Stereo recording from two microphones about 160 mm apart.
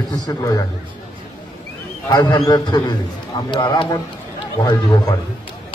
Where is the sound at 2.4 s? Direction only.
25° left (ahead or behind).